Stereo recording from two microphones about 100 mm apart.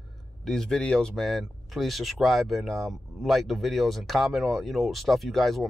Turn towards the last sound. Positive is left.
turn(degrees=0)  # may be behind; listen again after turning